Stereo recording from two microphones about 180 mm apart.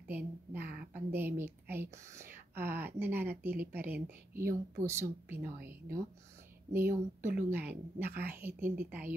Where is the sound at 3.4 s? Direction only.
55° right (ahead or behind).